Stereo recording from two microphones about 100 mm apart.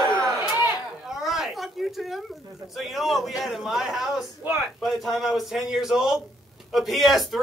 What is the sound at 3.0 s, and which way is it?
A man's voice, centre (ahead or behind).